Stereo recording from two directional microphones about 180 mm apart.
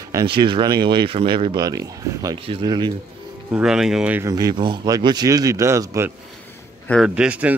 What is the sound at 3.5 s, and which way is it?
Speech, 5° right (ahead or behind).